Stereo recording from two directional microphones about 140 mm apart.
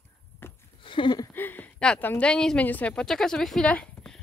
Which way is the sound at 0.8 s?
35° left (ahead or behind).